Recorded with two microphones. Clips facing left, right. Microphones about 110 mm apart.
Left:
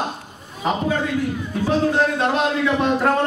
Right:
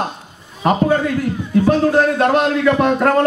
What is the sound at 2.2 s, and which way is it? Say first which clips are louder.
Speech: right 5 dB; 55° right (ahead or behind).